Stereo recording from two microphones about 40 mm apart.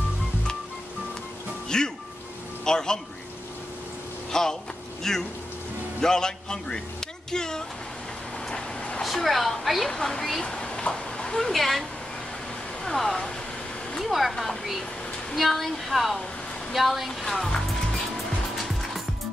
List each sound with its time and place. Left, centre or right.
1.7 s speech: centre
4.3 s a man's voice: centre
8.5 s vehicle: left
9.0 s speech: centre
9.8 s speech: centre
12.8 s speech: centre
17.6 s music: centre
18.4 s vehicle: centre